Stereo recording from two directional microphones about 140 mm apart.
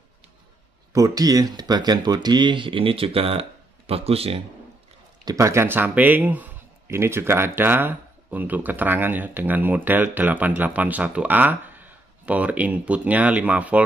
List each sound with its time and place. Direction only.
0.9 s speech: 25° right (ahead or behind); by 4.4 s 45° right (ahead or behind)
5.2 s speech: 20° right (ahead or behind)